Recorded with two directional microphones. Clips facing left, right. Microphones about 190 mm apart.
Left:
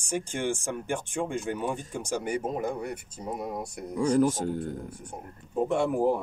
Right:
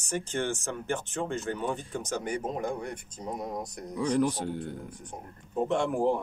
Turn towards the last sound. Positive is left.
turn(degrees=5)  # may be behind; listen again after turning